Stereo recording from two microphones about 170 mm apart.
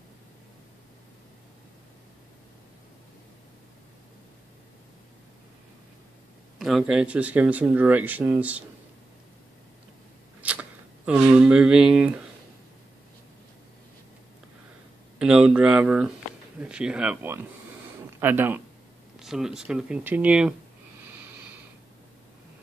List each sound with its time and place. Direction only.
6.6 s speech: 5° right (ahead or behind)
10.4 s speech: 10° right (ahead or behind)
15.1 s speech: 5° right (ahead or behind)